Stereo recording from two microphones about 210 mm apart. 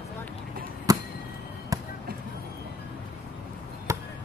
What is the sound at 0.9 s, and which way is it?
Basketball bounce, 15° right (ahead or behind).